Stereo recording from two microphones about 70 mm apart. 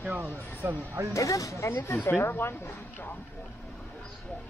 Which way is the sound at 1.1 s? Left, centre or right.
Left.